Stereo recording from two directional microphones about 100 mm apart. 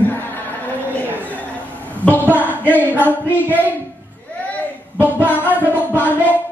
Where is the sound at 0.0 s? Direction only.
20° left (ahead or behind).